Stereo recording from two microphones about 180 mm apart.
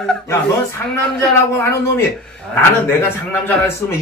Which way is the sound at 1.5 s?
15° left (ahead or behind).